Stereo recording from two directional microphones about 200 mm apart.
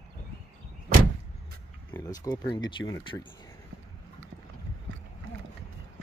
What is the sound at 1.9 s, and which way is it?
Speech, 20° left (ahead or behind).